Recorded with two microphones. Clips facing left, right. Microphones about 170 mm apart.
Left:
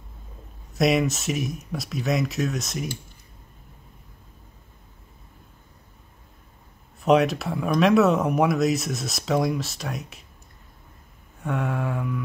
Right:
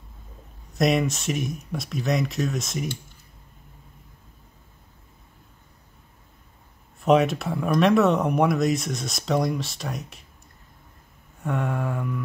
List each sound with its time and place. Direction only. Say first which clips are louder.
0.7 s speech: left 1 dB; centre (ahead or behind)
7.0 s speech: even; centre (ahead or behind)
11.4 s speech: even; centre (ahead or behind)